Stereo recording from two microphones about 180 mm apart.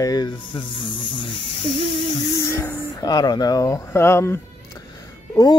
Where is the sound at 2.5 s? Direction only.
15° left (ahead or behind).